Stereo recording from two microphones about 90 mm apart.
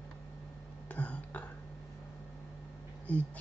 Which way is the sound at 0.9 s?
15° left (ahead or behind).